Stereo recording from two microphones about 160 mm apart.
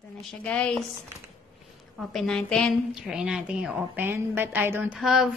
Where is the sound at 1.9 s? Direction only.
Centre (ahead or behind).